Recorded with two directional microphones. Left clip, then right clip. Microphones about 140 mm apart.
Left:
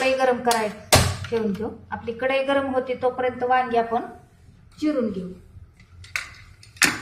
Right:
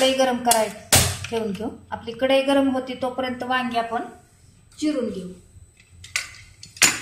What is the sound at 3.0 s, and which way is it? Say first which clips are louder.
Speech: left 3 dB; 35° right (ahead or behind).